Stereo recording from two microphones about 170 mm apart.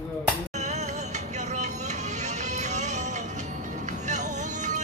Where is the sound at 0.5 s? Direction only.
40° right (ahead or behind).